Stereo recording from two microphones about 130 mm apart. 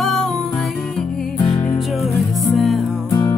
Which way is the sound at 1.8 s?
Centre (ahead or behind).